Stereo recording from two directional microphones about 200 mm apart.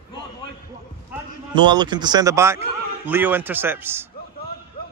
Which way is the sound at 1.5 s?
20° right (ahead or behind).